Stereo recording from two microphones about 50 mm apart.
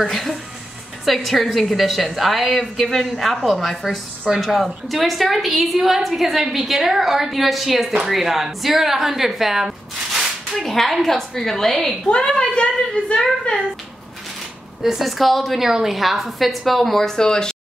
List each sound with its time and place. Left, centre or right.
0.1 s a woman's voice: centre
12.3 s a woman's voice: centre
14.8 s speech: centre